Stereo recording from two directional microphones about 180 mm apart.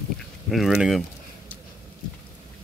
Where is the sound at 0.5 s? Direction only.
Centre (ahead or behind).